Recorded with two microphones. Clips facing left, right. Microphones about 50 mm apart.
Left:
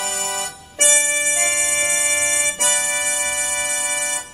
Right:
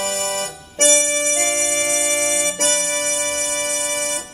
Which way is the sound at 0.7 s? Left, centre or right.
Centre.